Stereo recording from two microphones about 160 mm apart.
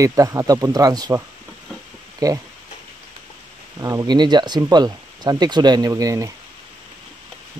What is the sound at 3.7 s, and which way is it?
Speech, 20° right (ahead or behind).